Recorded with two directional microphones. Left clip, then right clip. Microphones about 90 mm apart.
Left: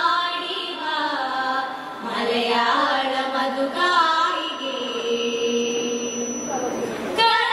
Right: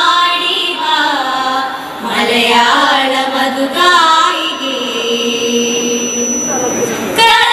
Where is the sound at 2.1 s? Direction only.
15° right (ahead or behind).